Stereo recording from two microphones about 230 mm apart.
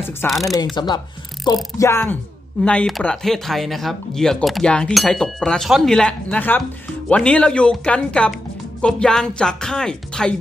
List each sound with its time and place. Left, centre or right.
0.2 s speech: centre
0.7 s speech: centre